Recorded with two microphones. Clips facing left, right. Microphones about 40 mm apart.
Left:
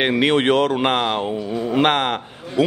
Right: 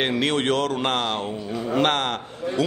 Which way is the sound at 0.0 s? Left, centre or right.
Left.